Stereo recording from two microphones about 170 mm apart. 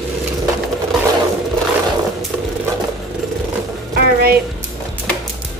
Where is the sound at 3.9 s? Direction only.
65° right (ahead or behind).